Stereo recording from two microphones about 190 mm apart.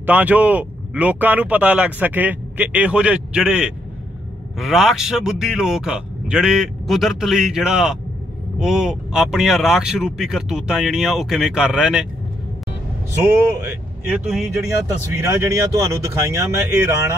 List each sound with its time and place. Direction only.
0.0 s speech: 10° right (ahead or behind)
13.5 s speech: 10° right (ahead or behind)